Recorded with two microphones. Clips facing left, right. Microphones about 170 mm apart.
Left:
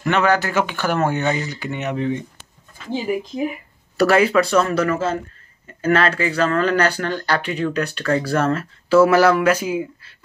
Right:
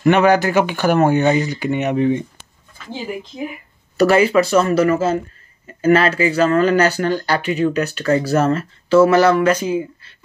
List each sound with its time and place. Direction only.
0.0 s speech: 15° right (ahead or behind)
3.9 s speech: centre (ahead or behind)
8.8 s speech: 5° left (ahead or behind)